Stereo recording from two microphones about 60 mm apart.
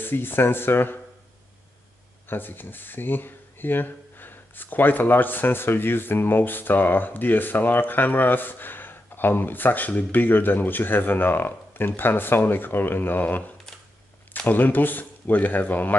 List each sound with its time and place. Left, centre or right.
0.0 s speech: left
2.2 s speech: left